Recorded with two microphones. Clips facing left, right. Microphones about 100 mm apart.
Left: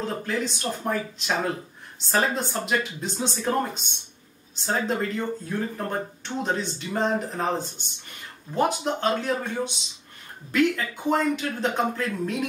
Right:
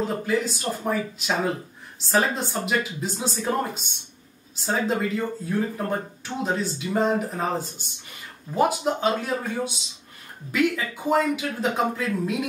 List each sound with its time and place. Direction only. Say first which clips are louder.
0.0 s speech: right 3 dB; 5° right (ahead or behind)